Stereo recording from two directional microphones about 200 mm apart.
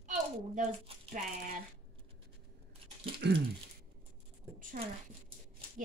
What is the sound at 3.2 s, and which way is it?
Speech, 60° right (ahead or behind).